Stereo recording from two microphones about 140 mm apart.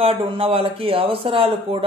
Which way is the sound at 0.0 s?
45° right (ahead or behind).